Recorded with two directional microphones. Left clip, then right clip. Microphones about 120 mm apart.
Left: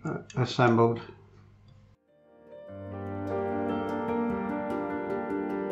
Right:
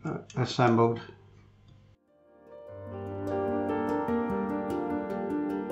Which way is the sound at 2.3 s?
5° right (ahead or behind).